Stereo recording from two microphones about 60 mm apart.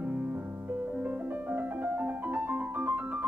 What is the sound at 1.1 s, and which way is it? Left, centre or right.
Piano, right.